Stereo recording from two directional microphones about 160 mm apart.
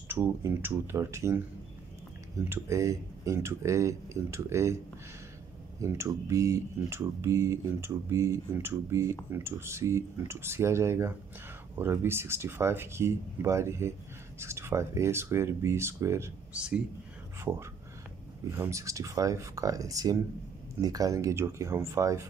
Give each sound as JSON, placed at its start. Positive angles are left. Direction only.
{"t": 0.1, "sound": "speech", "side_deg": -15}
{"t": 2.5, "sound": "speech", "side_deg": -20}
{"t": 5.8, "sound": "speech", "side_deg": -20}
{"t": 16.5, "sound": "speech", "side_deg": -5}